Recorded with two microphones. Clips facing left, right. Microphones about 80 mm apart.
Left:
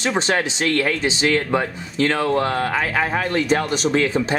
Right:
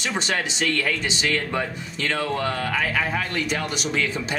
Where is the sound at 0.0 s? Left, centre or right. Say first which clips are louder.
Left 5 dB; left.